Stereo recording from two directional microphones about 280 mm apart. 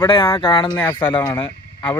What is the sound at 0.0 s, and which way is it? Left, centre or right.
Speech, centre.